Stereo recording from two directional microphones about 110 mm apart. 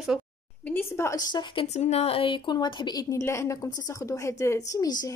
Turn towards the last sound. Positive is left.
turn(degrees=35)  # may be behind; listen again after turning